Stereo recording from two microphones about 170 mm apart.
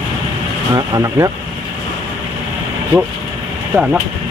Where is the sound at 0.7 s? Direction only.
20° right (ahead or behind).